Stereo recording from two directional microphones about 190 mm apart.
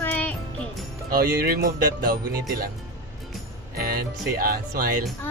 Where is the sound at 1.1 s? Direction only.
55° right (ahead or behind).